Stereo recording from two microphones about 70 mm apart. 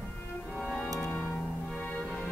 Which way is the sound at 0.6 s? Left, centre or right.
Centre.